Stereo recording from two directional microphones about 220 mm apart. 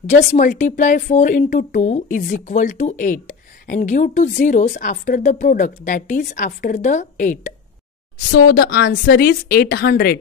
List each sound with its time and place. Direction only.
0.0 s a woman's voice: 35° left (ahead or behind)